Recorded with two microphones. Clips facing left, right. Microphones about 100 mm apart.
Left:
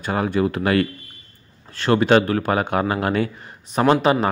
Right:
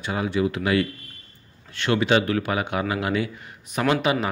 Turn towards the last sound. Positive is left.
turn(degrees=40)  # may be behind; listen again after turning